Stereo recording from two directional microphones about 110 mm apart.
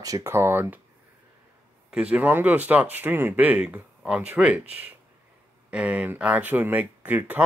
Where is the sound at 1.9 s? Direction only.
10° right (ahead or behind).